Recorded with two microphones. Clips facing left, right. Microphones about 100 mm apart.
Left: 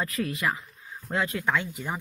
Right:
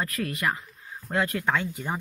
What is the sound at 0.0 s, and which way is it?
Speech, 15° left (ahead or behind).